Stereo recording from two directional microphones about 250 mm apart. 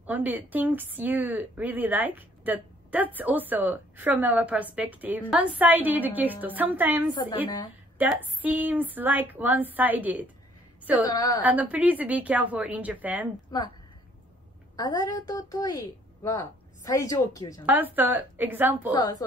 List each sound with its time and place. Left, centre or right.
0.0 s a woman's voice: centre
7.2 s a woman's voice: centre
8.0 s a woman's voice: centre
11.1 s a woman's voice: centre
11.4 s a woman's voice: centre
14.8 s a woman's voice: centre
17.6 s a woman's voice: centre
18.9 s a woman's voice: centre